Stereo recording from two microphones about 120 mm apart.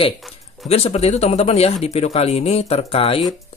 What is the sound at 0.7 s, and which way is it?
Speech, 55° left (ahead or behind).